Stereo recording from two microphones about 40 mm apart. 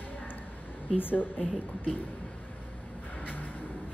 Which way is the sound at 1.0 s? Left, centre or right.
Left.